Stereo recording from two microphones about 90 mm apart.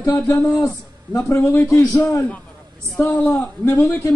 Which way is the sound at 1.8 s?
15° left (ahead or behind).